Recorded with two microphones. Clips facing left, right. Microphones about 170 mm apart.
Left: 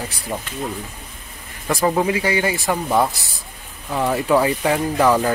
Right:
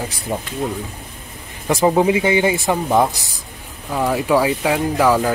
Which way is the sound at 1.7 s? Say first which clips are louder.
Right 4 dB; 20° right (ahead or behind).